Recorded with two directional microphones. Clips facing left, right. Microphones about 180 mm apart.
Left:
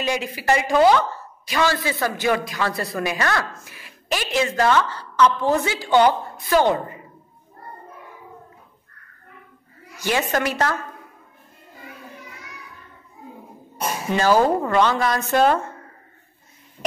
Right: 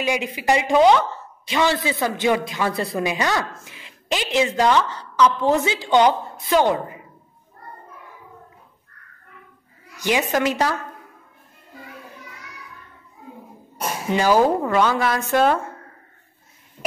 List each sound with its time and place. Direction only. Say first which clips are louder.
0.0 s a woman's voice: right 1 dB; 15° right (ahead or behind)
6.6 s a woman's voice: even; 10° right (ahead or behind)
9.9 s a woman's voice: right 1 dB; 15° right (ahead or behind)
14.1 s a woman's voice: right 1 dB; 10° right (ahead or behind)